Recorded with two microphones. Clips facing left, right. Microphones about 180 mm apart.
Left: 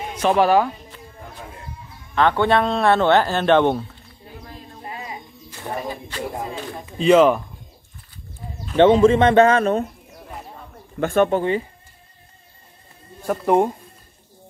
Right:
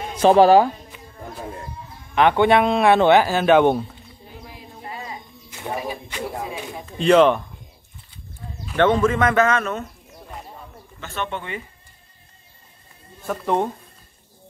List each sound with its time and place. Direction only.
0.2 s a man's voice: 30° right (ahead or behind)
2.1 s speech: 15° right (ahead or behind)
5.6 s speech: 10° right (ahead or behind)
6.9 s speech: 5° left (ahead or behind)
8.7 s a man's voice: 20° left (ahead or behind)
11.0 s speech: 50° left (ahead or behind)
13.3 s speech: 10° left (ahead or behind)